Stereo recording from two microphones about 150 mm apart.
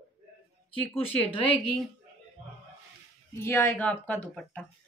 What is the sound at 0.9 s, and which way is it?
Speech, 40° left (ahead or behind).